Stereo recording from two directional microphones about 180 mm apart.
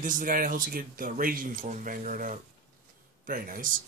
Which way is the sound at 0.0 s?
50° right (ahead or behind).